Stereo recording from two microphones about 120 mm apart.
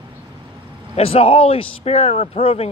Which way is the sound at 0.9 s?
55° left (ahead or behind).